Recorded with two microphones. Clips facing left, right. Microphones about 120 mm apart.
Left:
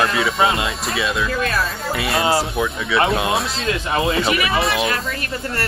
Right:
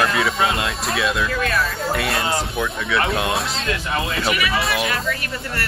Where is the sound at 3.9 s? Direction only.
25° left (ahead or behind).